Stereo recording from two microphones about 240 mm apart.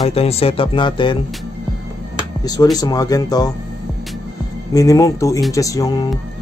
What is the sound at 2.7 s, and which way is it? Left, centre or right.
Speech, centre.